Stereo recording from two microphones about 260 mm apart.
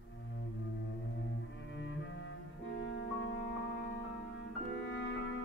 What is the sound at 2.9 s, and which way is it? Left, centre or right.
Music, left.